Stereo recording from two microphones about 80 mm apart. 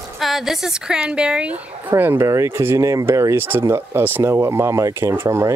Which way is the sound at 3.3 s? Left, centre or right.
Right.